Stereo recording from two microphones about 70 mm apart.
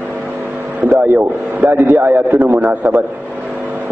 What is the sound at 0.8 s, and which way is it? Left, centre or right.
A man's voice, right.